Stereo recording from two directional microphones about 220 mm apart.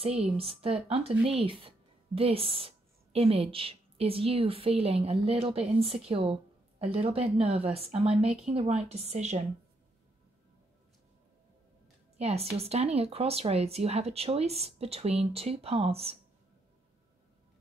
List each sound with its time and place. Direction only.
0.0 s speech: 25° right (ahead or behind)
12.2 s speech: 30° right (ahead or behind)